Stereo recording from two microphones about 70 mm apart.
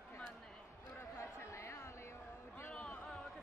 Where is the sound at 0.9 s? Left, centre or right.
Left.